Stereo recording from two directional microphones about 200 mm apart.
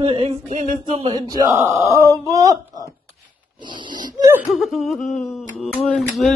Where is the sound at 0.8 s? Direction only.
25° right (ahead or behind).